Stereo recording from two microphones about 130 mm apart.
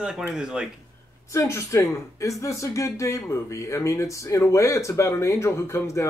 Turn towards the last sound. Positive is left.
turn(degrees=25)  # may be behind; listen again after turning